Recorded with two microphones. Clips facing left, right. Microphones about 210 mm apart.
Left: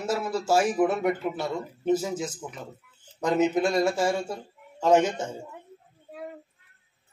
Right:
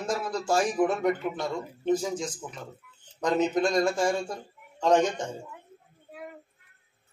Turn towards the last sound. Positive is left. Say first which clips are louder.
# left 2 dB
turn(degrees=5)  # may be behind; listen again after turning